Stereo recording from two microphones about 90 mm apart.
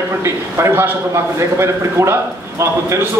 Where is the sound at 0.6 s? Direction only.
25° right (ahead or behind).